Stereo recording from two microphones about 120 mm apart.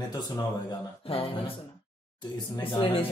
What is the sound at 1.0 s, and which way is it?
Speech, 55° left (ahead or behind).